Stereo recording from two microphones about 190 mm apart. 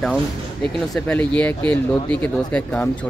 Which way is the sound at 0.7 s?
5° left (ahead or behind).